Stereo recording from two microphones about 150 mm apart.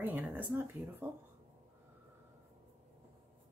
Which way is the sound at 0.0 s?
10° right (ahead or behind).